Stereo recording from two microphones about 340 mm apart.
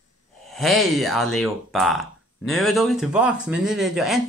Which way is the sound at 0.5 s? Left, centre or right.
Centre.